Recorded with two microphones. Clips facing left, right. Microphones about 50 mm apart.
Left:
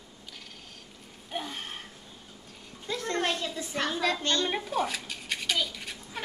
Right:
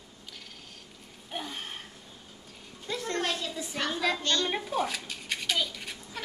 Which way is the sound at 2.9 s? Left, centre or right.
Centre.